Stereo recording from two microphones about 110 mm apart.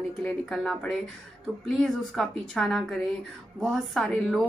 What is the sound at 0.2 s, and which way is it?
A woman's voice, 5° left (ahead or behind).